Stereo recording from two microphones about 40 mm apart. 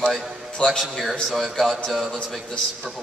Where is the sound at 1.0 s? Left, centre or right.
Centre.